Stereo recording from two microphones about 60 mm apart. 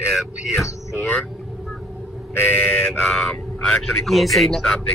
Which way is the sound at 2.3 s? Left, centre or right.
Left.